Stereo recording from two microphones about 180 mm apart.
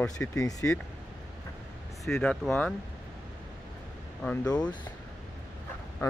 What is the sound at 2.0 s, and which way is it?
Speech, 5° left (ahead or behind).